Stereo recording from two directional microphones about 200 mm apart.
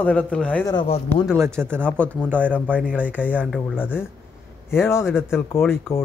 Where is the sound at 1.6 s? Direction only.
5° right (ahead or behind).